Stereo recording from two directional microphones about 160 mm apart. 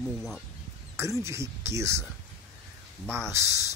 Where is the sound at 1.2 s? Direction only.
15° right (ahead or behind).